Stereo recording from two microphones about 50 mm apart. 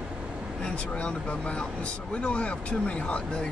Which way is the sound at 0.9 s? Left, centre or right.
Left.